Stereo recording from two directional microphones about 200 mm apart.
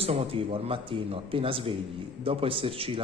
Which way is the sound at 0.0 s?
30° right (ahead or behind).